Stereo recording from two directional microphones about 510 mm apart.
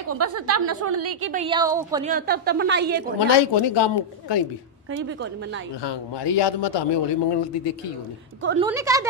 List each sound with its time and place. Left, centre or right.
0.1 s a woman's voice: right
1.3 s a woman's voice: centre
3.2 s a man's voice: left
5.9 s a man's voice: left
8.4 s a woman's voice: centre
8.6 s speech: centre